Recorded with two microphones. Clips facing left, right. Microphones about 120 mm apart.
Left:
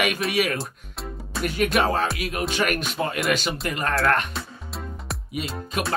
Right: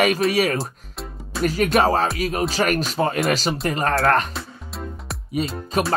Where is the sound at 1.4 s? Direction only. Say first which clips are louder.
Right 4 dB; 35° right (ahead or behind).